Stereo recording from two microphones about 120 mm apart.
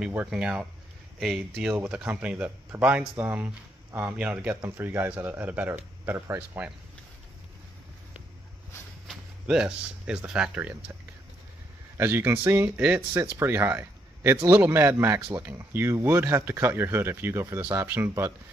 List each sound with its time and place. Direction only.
0.0 s speech: 15° right (ahead or behind); by 1.7 s centre (ahead or behind)
1.7 s speech: 20° right (ahead or behind)
2.0 s speech: 10° right (ahead or behind)
9.0 s speech: 5° right (ahead or behind)
12.0 s speech: 20° right (ahead or behind)